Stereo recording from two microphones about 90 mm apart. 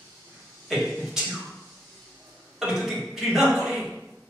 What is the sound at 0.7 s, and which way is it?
Speech, centre (ahead or behind).